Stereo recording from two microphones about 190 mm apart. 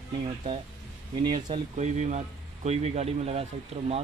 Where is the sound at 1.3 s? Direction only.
35° right (ahead or behind).